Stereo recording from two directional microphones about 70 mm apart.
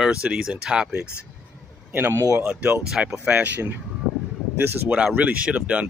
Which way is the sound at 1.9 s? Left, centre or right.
Right.